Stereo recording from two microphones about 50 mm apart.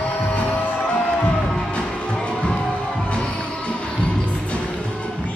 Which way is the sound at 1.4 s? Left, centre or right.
Centre.